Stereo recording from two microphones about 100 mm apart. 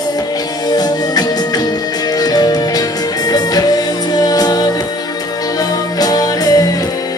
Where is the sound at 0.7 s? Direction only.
40° left (ahead or behind).